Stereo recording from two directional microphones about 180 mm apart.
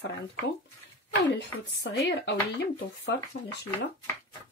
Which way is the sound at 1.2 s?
70° left (ahead or behind).